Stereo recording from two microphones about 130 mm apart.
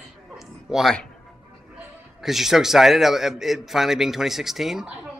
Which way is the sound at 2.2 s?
Centre (ahead or behind).